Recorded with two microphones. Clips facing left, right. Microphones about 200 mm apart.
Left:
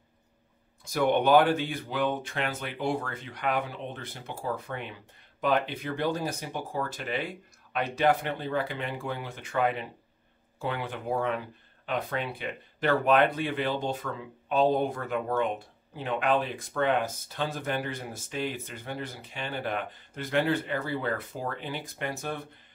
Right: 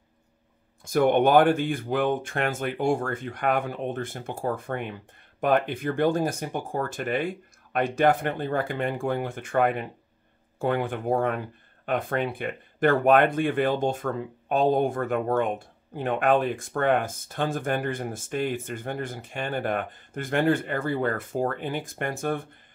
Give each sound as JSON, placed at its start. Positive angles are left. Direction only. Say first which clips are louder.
{"t": 0.8, "sound": "speech", "louder": "right 4 dB", "side_deg": -50}